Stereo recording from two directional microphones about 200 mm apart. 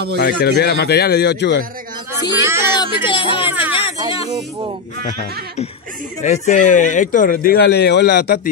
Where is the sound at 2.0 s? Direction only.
10° right (ahead or behind).